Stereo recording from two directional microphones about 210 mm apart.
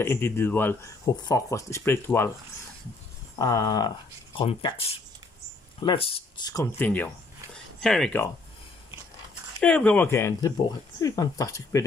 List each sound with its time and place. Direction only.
0.0 s speech: 10° left (ahead or behind)
3.3 s speech: 15° left (ahead or behind)
5.8 s speech: 25° left (ahead or behind); by 7.1 s 10° left (ahead or behind)
7.5 s a sound: centre (ahead or behind)
9.6 s speech: 5° left (ahead or behind)